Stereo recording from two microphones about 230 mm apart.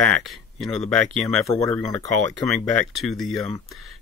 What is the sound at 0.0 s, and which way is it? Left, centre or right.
Speech, centre.